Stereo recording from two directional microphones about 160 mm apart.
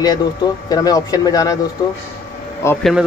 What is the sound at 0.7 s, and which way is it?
Speech, 25° left (ahead or behind).